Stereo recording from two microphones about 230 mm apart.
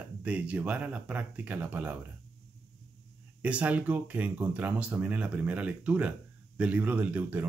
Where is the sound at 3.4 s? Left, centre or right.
Centre.